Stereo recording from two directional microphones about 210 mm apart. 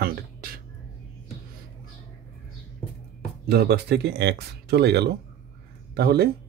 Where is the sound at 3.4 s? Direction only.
50° right (ahead or behind).